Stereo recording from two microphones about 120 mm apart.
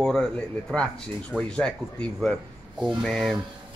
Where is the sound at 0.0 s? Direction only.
Centre (ahead or behind).